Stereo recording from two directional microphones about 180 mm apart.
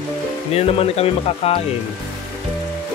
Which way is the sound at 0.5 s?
35° left (ahead or behind).